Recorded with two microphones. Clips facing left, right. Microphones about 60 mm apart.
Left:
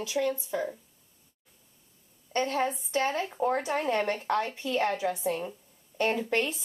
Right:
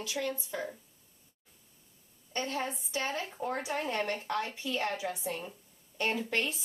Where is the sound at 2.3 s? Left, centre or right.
Left.